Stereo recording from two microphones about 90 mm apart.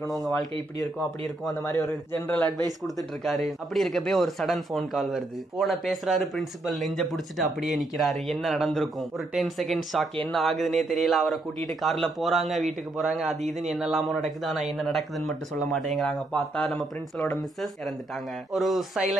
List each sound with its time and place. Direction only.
0.1 s a man's voice: centre (ahead or behind)
1.5 s a man's voice: 35° left (ahead or behind)
2.2 s speech: 20° left (ahead or behind)
3.0 s a man's voice: centre (ahead or behind)
18.5 s a man's voice: centre (ahead or behind)